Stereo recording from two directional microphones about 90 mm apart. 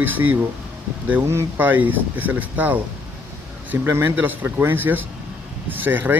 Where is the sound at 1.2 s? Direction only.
30° right (ahead or behind).